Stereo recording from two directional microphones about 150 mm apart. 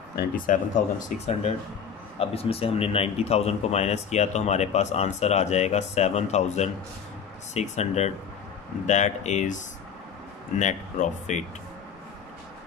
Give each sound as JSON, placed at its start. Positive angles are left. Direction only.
{"t": 0.1, "sound": "speech", "side_deg": 65}
{"t": 10.6, "sound": "speech", "side_deg": 55}